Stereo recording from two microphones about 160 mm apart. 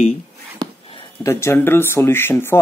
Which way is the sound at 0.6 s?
30° right (ahead or behind).